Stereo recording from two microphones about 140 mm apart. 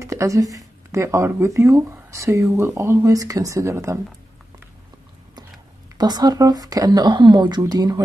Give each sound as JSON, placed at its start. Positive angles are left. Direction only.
{"t": 0.0, "sound": "speech", "side_deg": -20}
{"t": 5.9, "sound": "speech", "side_deg": -30}